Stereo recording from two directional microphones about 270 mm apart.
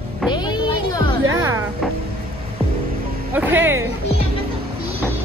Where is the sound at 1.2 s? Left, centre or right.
Centre.